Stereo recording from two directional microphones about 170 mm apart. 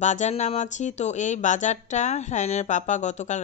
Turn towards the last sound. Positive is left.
turn(degrees=45)  # may be behind; listen again after turning